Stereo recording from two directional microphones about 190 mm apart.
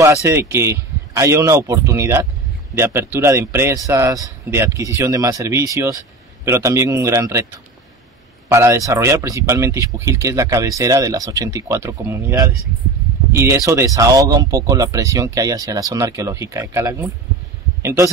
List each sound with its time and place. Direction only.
0.0 s speech: 15° right (ahead or behind)
8.5 s speech: 15° right (ahead or behind)